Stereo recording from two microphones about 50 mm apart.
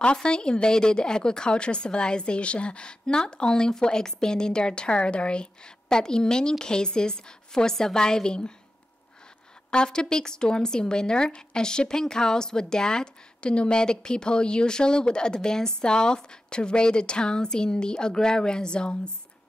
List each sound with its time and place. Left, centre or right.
0.0 s speech: centre
9.7 s speech: centre